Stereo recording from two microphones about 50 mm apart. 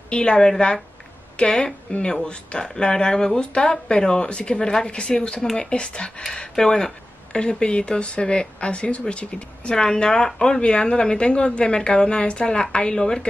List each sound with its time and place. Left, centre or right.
0.1 s speech: centre